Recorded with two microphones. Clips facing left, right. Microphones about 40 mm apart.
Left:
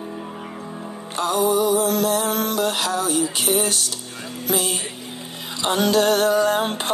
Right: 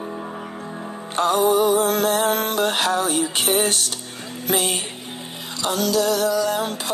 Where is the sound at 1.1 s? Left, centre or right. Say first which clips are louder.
Right 2 dB; right.